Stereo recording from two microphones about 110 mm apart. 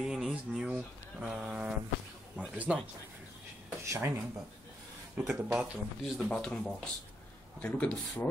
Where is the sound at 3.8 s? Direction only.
25° right (ahead or behind).